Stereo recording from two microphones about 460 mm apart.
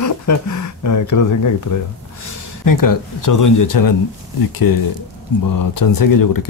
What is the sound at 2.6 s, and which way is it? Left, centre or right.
Speech, left.